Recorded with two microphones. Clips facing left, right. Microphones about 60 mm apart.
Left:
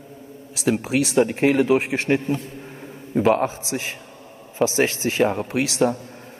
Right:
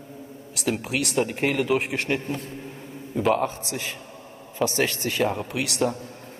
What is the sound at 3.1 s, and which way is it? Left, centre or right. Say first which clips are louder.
Speech: left 5 dB; left.